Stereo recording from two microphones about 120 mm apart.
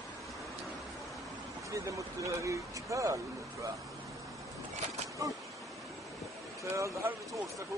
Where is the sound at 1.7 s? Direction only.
25° right (ahead or behind).